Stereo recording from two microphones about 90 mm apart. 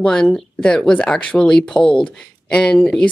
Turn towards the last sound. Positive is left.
turn(degrees=5)  # may be behind; listen again after turning